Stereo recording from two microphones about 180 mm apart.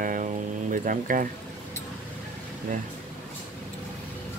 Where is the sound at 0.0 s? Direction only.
50° right (ahead or behind).